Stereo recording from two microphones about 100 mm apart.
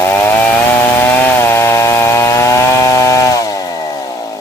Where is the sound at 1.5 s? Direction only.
25° left (ahead or behind).